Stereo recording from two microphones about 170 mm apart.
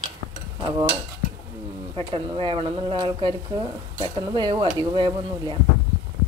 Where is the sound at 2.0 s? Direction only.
35° right (ahead or behind).